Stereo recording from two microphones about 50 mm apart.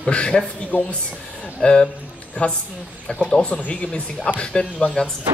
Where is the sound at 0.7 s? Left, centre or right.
Left.